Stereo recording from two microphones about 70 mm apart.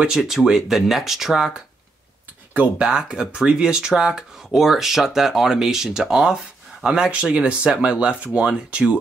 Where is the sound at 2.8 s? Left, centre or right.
Centre.